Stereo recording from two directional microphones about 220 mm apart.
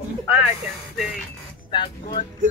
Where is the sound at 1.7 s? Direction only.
20° left (ahead or behind).